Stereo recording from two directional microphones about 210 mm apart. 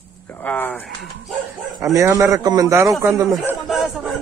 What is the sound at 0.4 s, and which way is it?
Speech, 10° left (ahead or behind).